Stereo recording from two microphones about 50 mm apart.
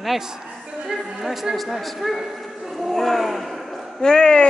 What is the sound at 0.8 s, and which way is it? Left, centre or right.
A man's voice, centre.